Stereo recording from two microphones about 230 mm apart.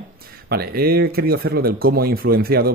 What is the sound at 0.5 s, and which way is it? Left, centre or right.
Speech, right.